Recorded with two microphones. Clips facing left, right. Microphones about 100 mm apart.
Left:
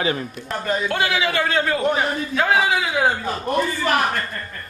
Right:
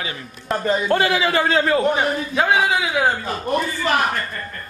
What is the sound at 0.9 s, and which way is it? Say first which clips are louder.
Speech: right 4 dB; 40° right (ahead or behind).